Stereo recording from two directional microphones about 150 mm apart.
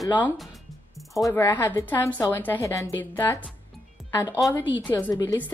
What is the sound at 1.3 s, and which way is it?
A woman's voice, 15° left (ahead or behind).